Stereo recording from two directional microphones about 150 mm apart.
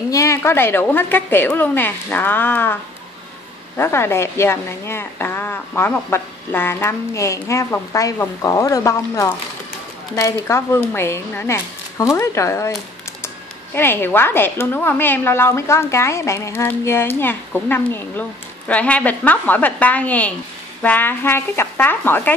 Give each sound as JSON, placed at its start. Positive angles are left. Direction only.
{"t": 0.1, "sound": "a woman's voice", "side_deg": 20}
{"t": 13.7, "sound": "a woman's voice", "side_deg": 15}